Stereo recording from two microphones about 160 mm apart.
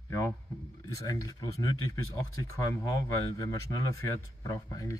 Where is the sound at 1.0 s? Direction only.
25° left (ahead or behind).